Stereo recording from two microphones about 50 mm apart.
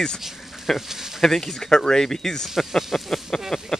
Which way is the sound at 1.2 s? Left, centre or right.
Centre.